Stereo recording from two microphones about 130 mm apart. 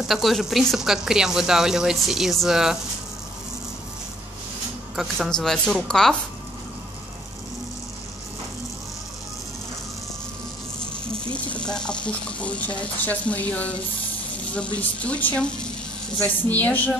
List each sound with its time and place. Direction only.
0.1 s speech: centre (ahead or behind)
4.9 s speech: centre (ahead or behind)
11.1 s a woman's voice: 10° left (ahead or behind)